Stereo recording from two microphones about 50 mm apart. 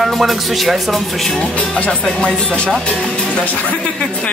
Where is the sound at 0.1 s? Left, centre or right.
Centre.